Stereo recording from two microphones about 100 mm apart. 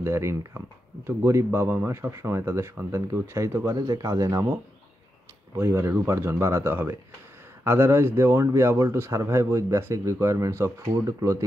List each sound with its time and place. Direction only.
0.0 s speech: 30° right (ahead or behind)
5.6 s speech: 25° right (ahead or behind)